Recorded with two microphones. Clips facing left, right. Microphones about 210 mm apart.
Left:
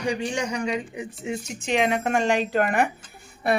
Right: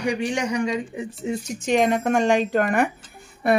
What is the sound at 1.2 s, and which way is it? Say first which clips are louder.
Speech: right 4 dB; 45° right (ahead or behind).